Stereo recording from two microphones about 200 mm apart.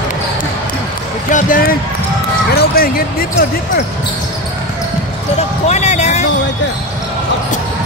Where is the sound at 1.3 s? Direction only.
45° left (ahead or behind).